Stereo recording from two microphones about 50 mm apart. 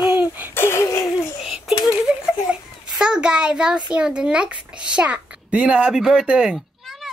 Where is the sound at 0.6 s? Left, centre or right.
Left.